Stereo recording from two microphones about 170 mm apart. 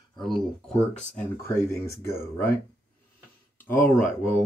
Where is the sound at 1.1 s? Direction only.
15° left (ahead or behind).